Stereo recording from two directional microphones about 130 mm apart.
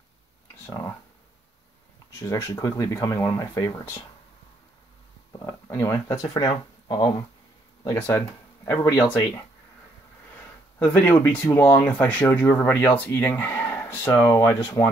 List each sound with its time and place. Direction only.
2.1 s speech: 20° left (ahead or behind)
5.4 s speech: 20° left (ahead or behind)
8.6 s speech: 20° left (ahead or behind)
10.8 s speech: 15° left (ahead or behind)